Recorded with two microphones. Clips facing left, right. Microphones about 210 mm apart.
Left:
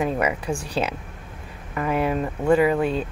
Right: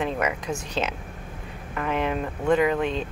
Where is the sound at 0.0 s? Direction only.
10° left (ahead or behind).